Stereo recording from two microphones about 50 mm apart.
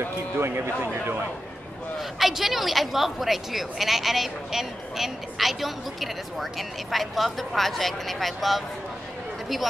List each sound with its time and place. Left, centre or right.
0.4 s a man's voice: right
2.0 s a woman's voice: centre